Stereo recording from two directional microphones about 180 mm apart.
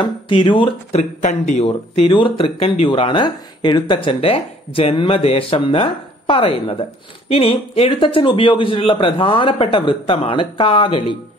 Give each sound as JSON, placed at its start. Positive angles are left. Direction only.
{"t": 0.0, "sound": "speech", "side_deg": 25}
{"t": 1.2, "sound": "speech", "side_deg": 40}